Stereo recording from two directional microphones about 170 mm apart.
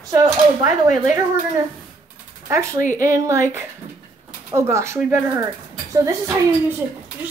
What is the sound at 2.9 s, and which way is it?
Speech, 20° right (ahead or behind).